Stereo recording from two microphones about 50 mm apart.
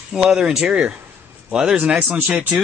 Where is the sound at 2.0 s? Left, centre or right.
Right.